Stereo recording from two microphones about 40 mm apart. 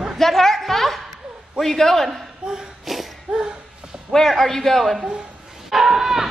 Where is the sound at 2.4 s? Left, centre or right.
Right.